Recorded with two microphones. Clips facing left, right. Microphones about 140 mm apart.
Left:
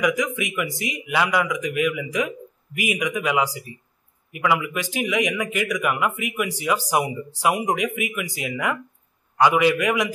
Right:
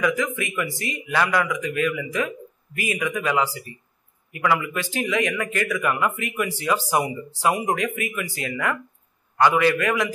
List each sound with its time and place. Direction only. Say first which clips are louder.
0.0 s speech: left 1 dB; 15° left (ahead or behind)